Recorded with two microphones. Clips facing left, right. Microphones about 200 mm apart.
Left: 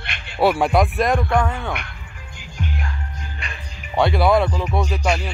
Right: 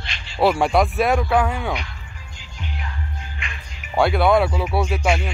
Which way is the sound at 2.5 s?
50° left (ahead or behind).